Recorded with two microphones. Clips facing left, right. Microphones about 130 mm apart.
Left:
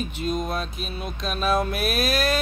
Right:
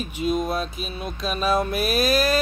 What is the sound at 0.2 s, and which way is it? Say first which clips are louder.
Music: right 4 dB; 5° right (ahead or behind).